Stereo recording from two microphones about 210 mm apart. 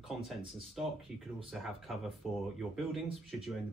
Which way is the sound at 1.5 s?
Centre (ahead or behind).